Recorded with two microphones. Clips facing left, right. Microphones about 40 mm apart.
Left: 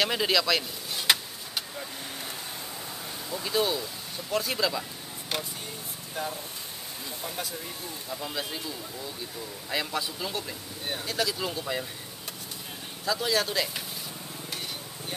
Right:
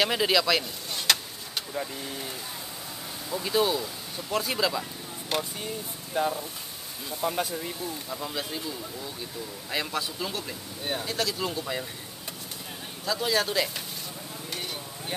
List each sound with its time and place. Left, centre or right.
0.0 s speech: centre
3.3 s speech: centre
6.1 s speech: centre
8.1 s speech: centre
13.0 s speech: centre